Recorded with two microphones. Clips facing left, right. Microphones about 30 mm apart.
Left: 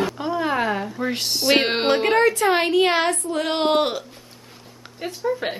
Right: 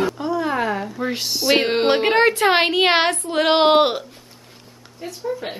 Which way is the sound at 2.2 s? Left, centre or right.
Right.